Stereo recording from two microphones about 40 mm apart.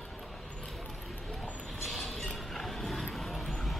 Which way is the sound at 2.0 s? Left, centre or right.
Centre.